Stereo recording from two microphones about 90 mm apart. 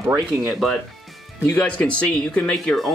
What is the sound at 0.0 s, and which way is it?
Speech, 30° right (ahead or behind).